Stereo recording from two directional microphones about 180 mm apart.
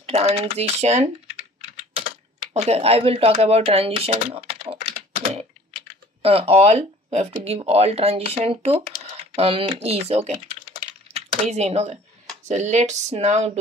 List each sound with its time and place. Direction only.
0.0 s speech: 35° right (ahead or behind)
2.0 s a sound: 40° right (ahead or behind)
6.2 s speech: 30° right (ahead or behind)